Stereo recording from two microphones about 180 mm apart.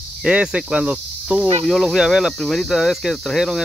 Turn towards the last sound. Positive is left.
turn(degrees=0)  # may be behind; listen again after turning